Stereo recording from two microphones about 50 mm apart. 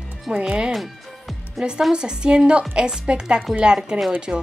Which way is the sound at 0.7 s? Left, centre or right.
Centre.